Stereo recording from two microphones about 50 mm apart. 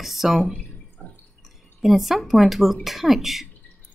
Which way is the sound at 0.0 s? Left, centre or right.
Centre.